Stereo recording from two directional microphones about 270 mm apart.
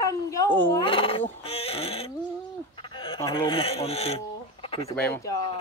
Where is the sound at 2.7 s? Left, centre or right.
Centre.